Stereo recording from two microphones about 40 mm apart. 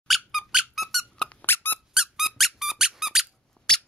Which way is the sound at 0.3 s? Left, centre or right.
Centre.